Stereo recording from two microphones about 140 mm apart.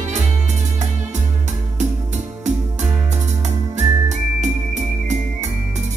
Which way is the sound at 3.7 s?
60° right (ahead or behind).